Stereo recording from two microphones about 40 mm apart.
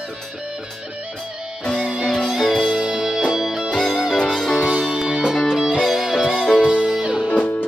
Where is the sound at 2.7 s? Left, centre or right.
Right.